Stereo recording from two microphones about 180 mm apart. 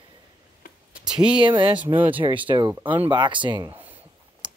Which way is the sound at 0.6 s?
55° left (ahead or behind).